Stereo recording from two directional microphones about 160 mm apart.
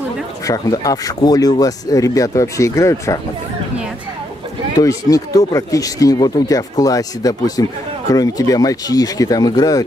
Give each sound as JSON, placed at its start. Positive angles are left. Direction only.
{"t": 0.5, "sound": "speech", "side_deg": 20}
{"t": 4.7, "sound": "speech", "side_deg": 20}